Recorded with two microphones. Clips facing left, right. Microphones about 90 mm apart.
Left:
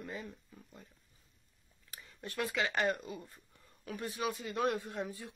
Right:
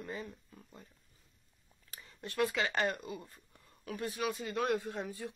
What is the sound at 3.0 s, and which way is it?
Speech, 20° right (ahead or behind).